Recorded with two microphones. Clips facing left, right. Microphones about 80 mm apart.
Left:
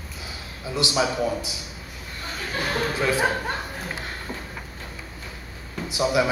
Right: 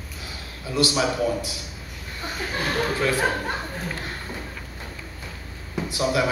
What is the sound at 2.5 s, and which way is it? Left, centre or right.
Speech, centre.